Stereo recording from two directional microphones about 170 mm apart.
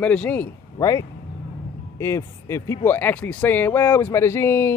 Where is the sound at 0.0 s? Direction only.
5° left (ahead or behind).